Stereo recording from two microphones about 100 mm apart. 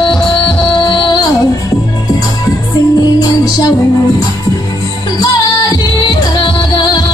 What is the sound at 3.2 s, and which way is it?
Music, 40° left (ahead or behind).